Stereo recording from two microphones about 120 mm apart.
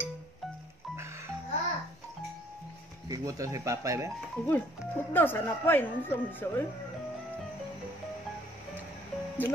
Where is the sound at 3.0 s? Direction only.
30° right (ahead or behind).